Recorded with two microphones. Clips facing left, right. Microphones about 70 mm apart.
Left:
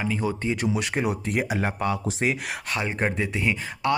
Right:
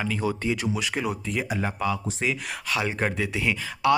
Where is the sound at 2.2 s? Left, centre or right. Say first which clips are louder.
Left 2 dB; left.